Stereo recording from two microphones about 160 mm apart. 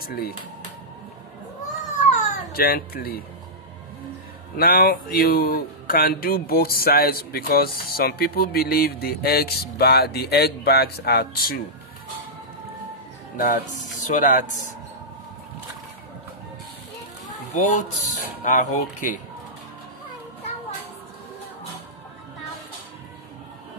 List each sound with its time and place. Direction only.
0.0 s a man's voice: 70° left (ahead or behind)
2.0 s baby cry: 45° left (ahead or behind)
2.5 s a man's voice: 65° left (ahead or behind)
4.6 s a man's voice: 65° left (ahead or behind)
13.4 s speech: 55° left (ahead or behind)
17.5 s speech: 50° left (ahead or behind)